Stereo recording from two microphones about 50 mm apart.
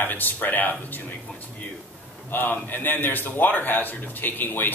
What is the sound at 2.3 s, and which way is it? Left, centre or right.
A man's voice, left.